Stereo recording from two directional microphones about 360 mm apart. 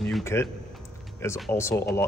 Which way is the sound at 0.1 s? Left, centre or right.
Centre.